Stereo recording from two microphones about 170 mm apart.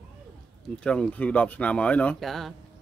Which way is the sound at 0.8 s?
5° left (ahead or behind).